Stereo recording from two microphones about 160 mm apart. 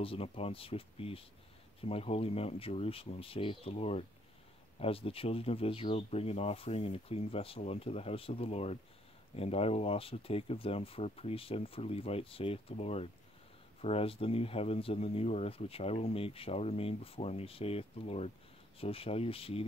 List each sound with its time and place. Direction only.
0.0 s speech: 35° left (ahead or behind)